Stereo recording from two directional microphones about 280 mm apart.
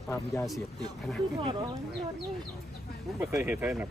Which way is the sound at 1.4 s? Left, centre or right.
Centre.